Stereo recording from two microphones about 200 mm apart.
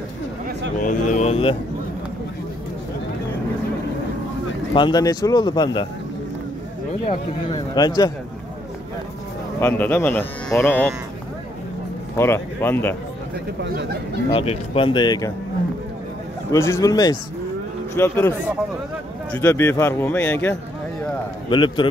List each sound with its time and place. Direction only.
0.7 s speech: 40° left (ahead or behind)
4.7 s speech: 20° left (ahead or behind)
7.1 s speech: 20° left (ahead or behind)
9.6 s speech: 10° left (ahead or behind)
12.2 s speech: 10° left (ahead or behind)
13.6 s speech: 55° right (ahead or behind)
14.3 s speech: 30° left (ahead or behind)
16.5 s speech: 15° left (ahead or behind)
19.3 s speech: 10° left (ahead or behind)
21.5 s speech: 25° left (ahead or behind)